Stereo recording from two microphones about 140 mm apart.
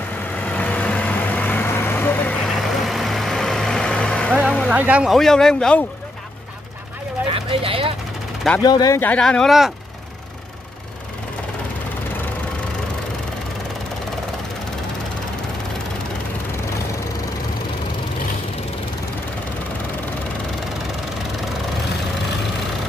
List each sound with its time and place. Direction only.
0.5 s vehicle: 10° left (ahead or behind)
2.4 s vehicle: centre (ahead or behind)
4.6 s speech: 10° right (ahead or behind)
5.1 s speech: 5° left (ahead or behind)
7.2 s a sound: 40° right (ahead or behind)
8.6 s speech: 30° left (ahead or behind)
9.0 s speech: 10° left (ahead or behind)